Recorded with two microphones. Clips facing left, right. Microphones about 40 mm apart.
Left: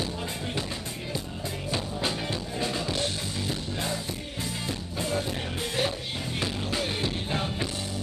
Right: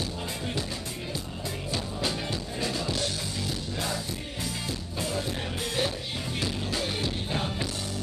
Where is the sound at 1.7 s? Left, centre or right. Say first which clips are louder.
Left 1 dB; left.